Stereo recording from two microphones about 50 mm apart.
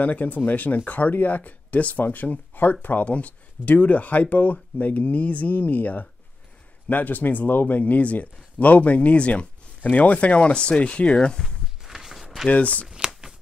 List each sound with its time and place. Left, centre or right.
0.0 s speech: left
11.1 s speech: centre
11.8 s a sound: centre
12.4 s speech: left
12.8 s shuffling cards: centre